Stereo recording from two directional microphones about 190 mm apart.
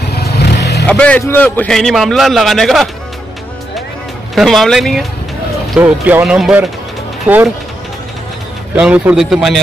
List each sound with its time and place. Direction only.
0.1 s vehicle: 55° left (ahead or behind)
0.8 s a man's voice: 5° left (ahead or behind)
4.4 s a man's voice: centre (ahead or behind)
8.7 s a man's voice: 5° right (ahead or behind)